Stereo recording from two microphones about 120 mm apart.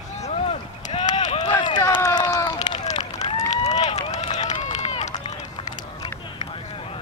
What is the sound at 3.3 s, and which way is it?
Run, 70° left (ahead or behind).